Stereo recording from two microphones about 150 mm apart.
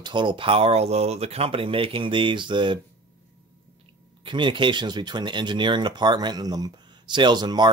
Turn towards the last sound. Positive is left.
turn(degrees=-30)  # may be behind; listen again after turning